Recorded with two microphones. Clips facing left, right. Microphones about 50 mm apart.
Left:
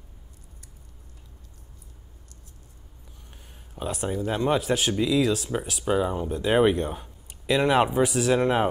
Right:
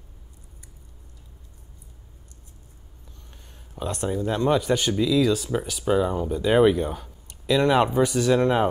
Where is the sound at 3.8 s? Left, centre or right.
Centre.